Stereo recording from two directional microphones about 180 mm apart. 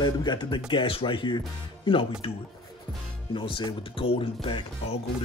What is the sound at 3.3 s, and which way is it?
Speech, 25° left (ahead or behind).